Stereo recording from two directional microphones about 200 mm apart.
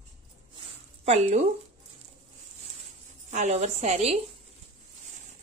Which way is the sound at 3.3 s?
35° right (ahead or behind).